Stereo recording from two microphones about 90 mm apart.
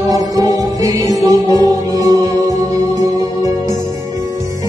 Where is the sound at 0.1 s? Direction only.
45° right (ahead or behind).